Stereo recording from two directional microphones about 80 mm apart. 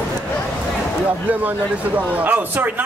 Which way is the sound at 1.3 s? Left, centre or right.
Centre.